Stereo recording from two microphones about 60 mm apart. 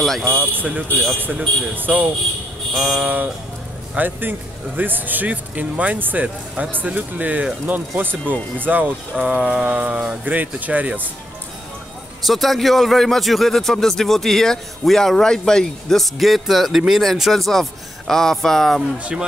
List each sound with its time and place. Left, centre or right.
0.3 s speech: right
2.7 s speech: centre
3.0 s speech: right
6.2 s speech: centre
6.7 s speech: right
9.2 s speech: centre; by 11.1 s right
12.3 s speech: centre